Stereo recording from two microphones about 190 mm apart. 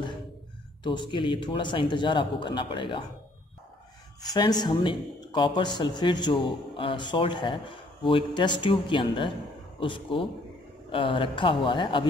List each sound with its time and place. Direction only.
0.8 s speech: 25° left (ahead or behind)
4.3 s speech: 20° left (ahead or behind)